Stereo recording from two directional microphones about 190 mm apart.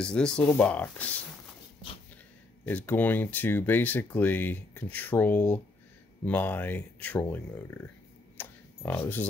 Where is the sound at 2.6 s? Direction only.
10° left (ahead or behind).